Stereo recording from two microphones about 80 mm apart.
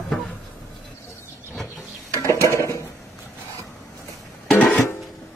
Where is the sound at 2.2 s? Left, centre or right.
Left.